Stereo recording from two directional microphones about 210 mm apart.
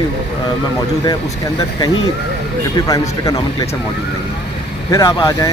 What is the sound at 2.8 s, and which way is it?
Speech, 15° left (ahead or behind).